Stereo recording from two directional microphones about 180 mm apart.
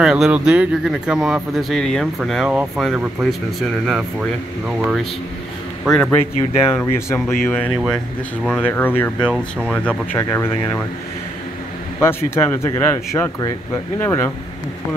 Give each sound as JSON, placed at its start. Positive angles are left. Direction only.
{"t": 0.0, "sound": "speech", "side_deg": -5}
{"t": 10.1, "sound": "speech", "side_deg": 15}
{"t": 12.0, "sound": "speech", "side_deg": 15}